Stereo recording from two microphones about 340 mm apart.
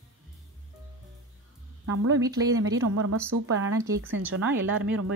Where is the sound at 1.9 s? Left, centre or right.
Right.